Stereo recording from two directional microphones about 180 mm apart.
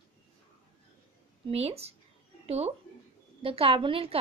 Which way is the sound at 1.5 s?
35° right (ahead or behind).